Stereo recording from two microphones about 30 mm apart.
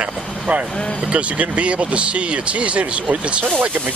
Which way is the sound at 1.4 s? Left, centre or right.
Right.